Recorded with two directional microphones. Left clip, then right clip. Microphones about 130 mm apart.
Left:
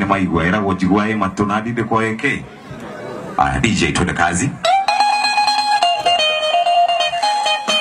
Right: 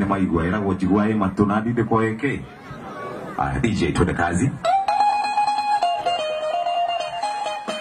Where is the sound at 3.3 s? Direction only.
20° left (ahead or behind).